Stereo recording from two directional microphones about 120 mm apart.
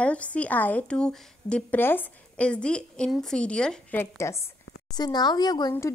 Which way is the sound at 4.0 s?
25° left (ahead or behind).